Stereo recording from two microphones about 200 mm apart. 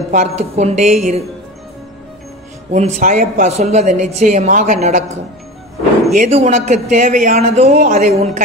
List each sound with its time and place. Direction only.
0.1 s a woman's voice: 35° right (ahead or behind)
2.7 s a woman's voice: 35° right (ahead or behind)